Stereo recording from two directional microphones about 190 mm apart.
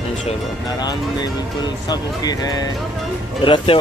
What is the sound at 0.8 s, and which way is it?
Speech, 20° left (ahead or behind).